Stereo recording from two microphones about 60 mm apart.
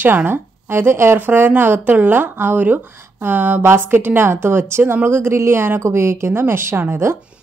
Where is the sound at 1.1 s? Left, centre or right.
Right.